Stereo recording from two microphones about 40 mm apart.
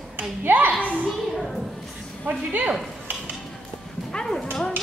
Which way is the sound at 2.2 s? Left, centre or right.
Right.